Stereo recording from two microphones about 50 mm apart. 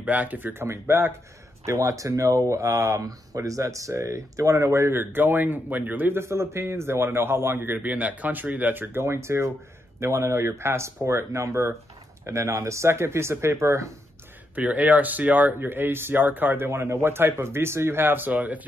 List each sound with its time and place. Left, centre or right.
0.0 s speech: right
1.7 s speech: right
4.9 s speech: right
9.0 s speech: right
14.5 s speech: right